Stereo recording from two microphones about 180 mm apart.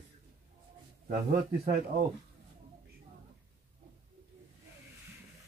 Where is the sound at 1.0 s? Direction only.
50° right (ahead or behind).